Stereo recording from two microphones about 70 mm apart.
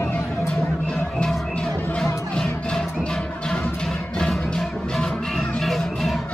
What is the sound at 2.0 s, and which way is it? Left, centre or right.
Music, centre.